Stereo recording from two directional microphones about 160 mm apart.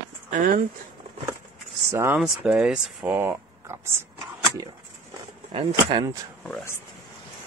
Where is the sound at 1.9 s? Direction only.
15° right (ahead or behind).